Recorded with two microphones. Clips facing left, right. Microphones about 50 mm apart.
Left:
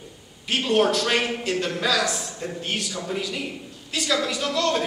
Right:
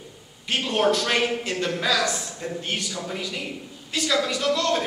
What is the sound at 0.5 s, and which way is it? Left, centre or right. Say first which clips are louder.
A man's voice: left 1 dB; centre.